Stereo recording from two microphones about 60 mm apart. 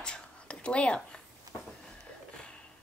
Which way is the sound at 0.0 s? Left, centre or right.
Centre.